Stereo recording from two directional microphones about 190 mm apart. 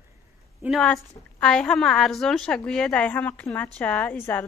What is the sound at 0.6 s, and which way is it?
A woman's voice, centre (ahead or behind).